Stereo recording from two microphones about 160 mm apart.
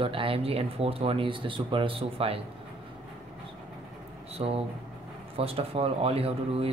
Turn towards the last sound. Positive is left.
turn(degrees=-35)  # may be behind; listen again after turning